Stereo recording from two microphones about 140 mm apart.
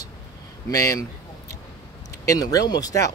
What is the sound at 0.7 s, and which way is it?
Speech, 25° left (ahead or behind).